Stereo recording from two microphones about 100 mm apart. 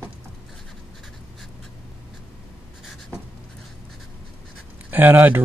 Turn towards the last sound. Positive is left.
turn(degrees=-20)  # may be behind; listen again after turning